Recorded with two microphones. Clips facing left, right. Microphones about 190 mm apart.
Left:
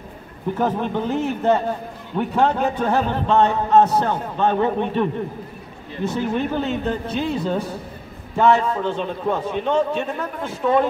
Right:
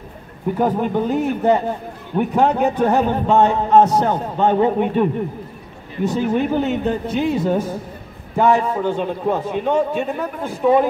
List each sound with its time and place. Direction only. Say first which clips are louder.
0.6 s a man's voice: right 4 dB; 10° right (ahead or behind)
6.1 s a man's voice: right 4 dB; 15° right (ahead or behind)